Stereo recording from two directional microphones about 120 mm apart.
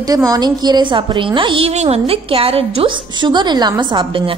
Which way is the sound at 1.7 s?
60° right (ahead or behind).